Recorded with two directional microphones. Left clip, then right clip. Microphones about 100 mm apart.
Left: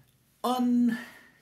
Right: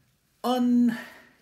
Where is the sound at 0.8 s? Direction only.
50° right (ahead or behind).